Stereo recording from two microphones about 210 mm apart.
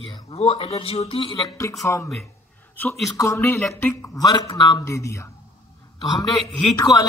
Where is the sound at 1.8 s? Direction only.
15° left (ahead or behind).